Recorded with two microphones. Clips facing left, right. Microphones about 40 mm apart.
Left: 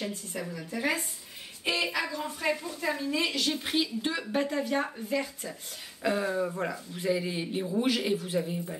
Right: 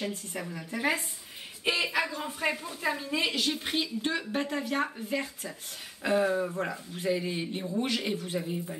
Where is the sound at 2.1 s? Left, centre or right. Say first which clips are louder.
Left 1 dB; right.